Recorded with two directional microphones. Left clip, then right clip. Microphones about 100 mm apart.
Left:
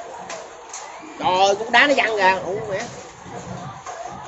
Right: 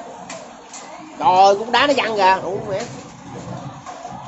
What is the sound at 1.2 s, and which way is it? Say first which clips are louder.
Speech: right 5 dB; 45° right (ahead or behind).